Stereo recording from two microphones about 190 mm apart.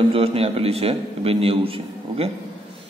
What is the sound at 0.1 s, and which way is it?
A man's voice, 30° right (ahead or behind).